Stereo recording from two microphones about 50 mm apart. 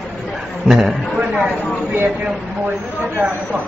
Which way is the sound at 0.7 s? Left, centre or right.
Centre.